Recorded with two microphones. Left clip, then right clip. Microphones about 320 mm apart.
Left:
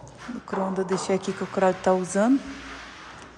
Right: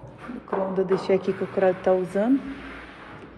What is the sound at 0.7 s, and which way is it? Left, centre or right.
A woman's voice, centre.